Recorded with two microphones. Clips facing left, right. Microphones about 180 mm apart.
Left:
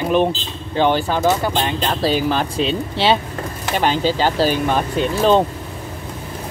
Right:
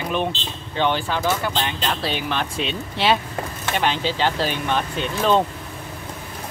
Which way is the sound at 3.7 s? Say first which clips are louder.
Left 5 dB; 40° left (ahead or behind).